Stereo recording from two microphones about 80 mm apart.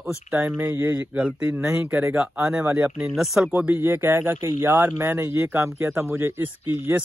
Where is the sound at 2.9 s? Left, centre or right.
Centre.